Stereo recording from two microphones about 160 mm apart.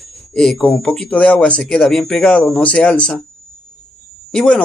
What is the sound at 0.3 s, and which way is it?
Speech, 5° left (ahead or behind).